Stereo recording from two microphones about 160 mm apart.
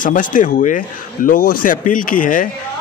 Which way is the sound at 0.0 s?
55° left (ahead or behind).